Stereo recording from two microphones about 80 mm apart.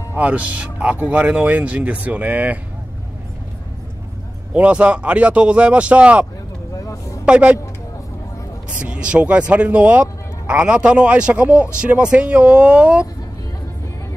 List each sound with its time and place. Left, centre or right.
0.1 s speech: centre
4.6 s speech: centre
6.8 s vehicle: left
7.2 s speech: centre
8.6 s speech: centre